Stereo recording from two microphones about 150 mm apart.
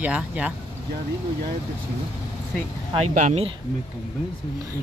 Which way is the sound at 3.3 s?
40° right (ahead or behind).